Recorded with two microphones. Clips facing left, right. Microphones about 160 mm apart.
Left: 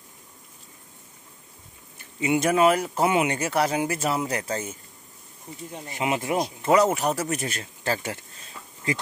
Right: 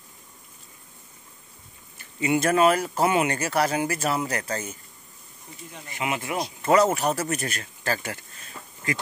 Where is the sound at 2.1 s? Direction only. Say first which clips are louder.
Even; 15° left (ahead or behind).